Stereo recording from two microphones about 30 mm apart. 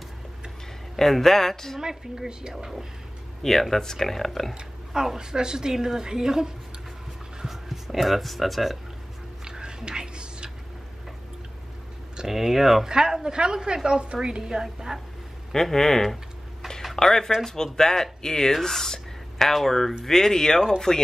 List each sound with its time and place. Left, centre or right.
0.9 s speech: centre
1.8 s a woman's voice: centre
3.7 s speech: centre
5.0 s a woman's voice: centre
7.4 s speech: centre
9.4 s a sound: right
12.3 s a woman's voice: centre
12.8 s a woman's voice: right
15.5 s speech: centre